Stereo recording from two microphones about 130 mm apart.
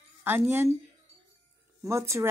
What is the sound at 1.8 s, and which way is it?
Speech, 20° right (ahead or behind).